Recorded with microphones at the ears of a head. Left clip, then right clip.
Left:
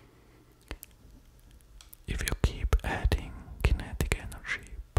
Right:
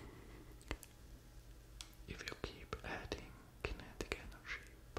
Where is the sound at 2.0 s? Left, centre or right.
Left.